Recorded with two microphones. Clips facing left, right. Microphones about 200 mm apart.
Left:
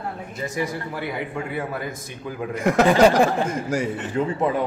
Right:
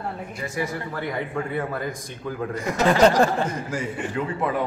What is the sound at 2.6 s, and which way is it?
Speech, 55° left (ahead or behind).